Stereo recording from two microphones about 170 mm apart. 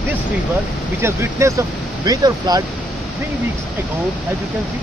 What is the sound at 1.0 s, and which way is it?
Speech, 15° right (ahead or behind).